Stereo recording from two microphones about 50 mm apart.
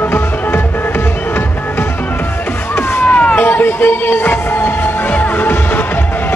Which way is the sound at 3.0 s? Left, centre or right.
Left.